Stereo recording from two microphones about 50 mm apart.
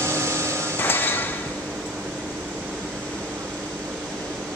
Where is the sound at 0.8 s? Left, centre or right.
Left.